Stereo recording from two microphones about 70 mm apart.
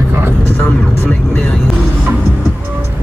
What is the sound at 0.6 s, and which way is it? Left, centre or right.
Vehicle, left.